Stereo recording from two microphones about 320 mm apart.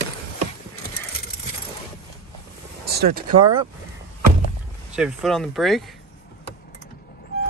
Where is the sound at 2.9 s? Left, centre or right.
Right.